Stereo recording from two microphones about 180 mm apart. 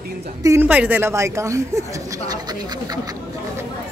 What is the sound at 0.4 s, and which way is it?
A man's voice, 15° right (ahead or behind).